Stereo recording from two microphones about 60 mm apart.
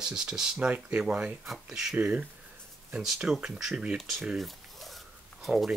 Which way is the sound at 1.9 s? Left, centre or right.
Right.